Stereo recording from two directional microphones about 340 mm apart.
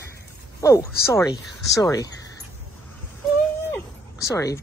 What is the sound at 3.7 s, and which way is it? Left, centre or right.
Bow-wow, centre.